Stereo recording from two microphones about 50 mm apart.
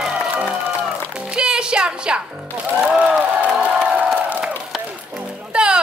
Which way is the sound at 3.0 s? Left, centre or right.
Right.